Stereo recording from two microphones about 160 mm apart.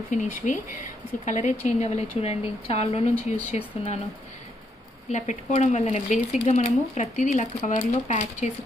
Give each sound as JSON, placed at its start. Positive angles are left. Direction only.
{"t": 0.1, "sound": "speech", "side_deg": 50}
{"t": 5.1, "sound": "speech", "side_deg": 50}